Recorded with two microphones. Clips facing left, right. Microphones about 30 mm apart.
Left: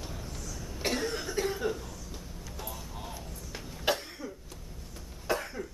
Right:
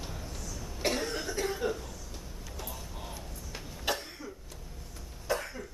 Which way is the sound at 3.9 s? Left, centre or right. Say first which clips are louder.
Left 3 dB; left.